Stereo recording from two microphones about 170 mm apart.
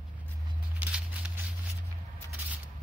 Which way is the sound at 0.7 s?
5° right (ahead or behind).